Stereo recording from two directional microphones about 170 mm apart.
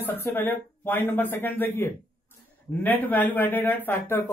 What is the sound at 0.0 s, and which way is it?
Speech, 10° left (ahead or behind).